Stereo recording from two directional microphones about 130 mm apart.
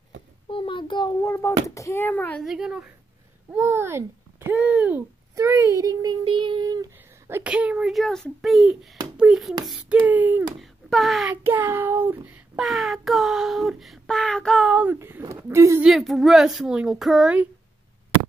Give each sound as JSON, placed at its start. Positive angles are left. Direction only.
{"t": 0.5, "sound": "a sound", "side_deg": 40}
{"t": 1.2, "sound": "a child's voice", "side_deg": 20}
{"t": 2.4, "sound": "speech", "side_deg": -5}
{"t": 3.5, "sound": "a child's voice", "side_deg": -20}
{"t": 7.2, "sound": "a child's voice", "side_deg": -15}
{"t": 10.6, "sound": "speech", "side_deg": 0}
{"t": 11.2, "sound": "a child's voice", "side_deg": -15}
{"t": 12.5, "sound": "speech", "side_deg": 0}
{"t": 14.7, "sound": "a child's voice", "side_deg": -10}
{"t": 15.8, "sound": "speech", "side_deg": 0}